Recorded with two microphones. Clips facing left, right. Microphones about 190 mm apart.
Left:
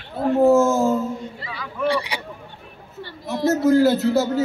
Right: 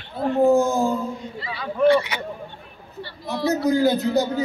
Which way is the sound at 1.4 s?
30° right (ahead or behind).